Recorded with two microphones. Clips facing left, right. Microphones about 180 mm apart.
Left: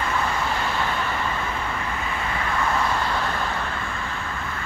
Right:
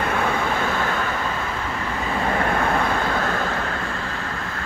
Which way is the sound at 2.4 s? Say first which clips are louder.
Right 3 dB; 55° right (ahead or behind).